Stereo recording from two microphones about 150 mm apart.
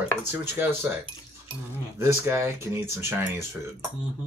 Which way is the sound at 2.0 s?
15° right (ahead or behind).